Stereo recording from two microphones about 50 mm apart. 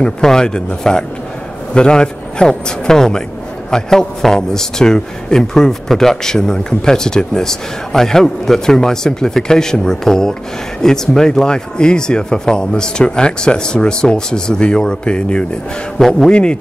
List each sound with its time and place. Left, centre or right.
0.0 s a man's voice: centre